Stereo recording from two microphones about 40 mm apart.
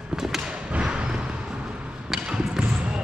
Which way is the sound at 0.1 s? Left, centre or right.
Centre.